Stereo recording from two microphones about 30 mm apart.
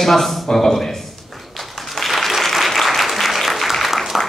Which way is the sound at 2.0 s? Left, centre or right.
Centre.